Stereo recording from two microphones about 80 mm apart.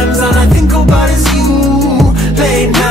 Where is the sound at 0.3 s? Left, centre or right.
Centre.